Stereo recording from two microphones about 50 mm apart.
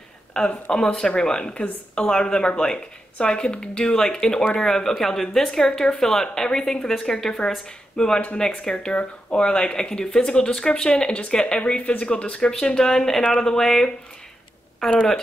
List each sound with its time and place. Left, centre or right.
0.3 s speech: centre